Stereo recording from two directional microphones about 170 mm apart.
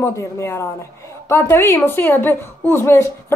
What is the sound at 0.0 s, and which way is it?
A woman's voice, 15° left (ahead or behind).